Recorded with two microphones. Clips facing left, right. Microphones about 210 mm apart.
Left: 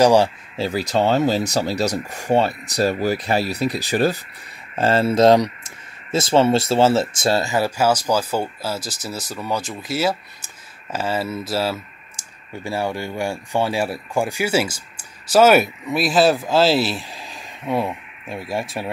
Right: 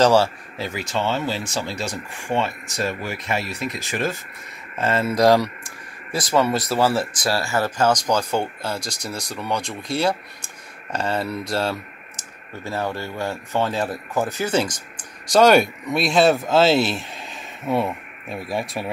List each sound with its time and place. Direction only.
0.0 s speech: 15° left (ahead or behind)
0.6 s speech: 35° left (ahead or behind); by 18.9 s centre (ahead or behind)